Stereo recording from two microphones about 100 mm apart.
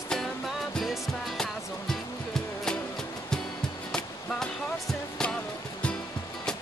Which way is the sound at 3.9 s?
5° left (ahead or behind).